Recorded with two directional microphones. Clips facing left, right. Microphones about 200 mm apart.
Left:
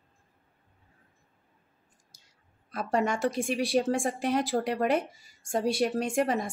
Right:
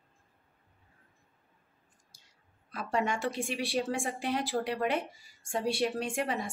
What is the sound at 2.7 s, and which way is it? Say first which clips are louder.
A woman's voice: left 4 dB; 40° left (ahead or behind).